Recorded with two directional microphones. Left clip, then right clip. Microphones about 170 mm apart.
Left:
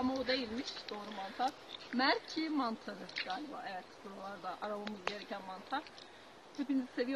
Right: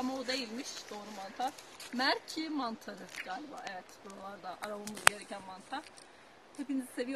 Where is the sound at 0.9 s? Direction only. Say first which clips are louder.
Even; 15° right (ahead or behind).